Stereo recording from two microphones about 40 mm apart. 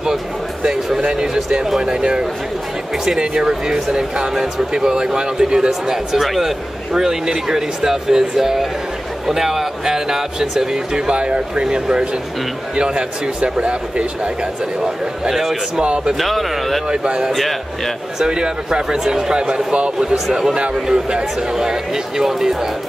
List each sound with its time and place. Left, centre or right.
0.7 s speech: centre
1.0 s speech: centre
5.7 s speech: centre; by 14.3 s right
14.8 s speech: centre
15.8 s speech: right
16.2 s speech: centre
16.9 s speech: right
17.3 s speech: centre
18.2 s speech: centre